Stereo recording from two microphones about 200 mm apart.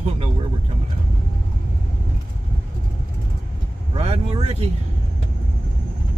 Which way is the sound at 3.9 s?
30° right (ahead or behind).